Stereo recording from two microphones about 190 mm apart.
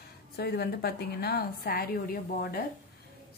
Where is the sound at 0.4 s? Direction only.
55° left (ahead or behind).